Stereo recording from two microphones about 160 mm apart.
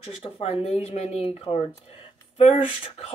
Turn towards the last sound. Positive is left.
turn(degrees=40)  # may be behind; listen again after turning